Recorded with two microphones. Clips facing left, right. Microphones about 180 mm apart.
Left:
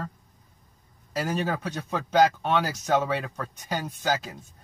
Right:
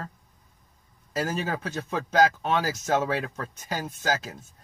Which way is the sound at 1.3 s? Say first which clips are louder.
Left 2 dB; centre (ahead or behind).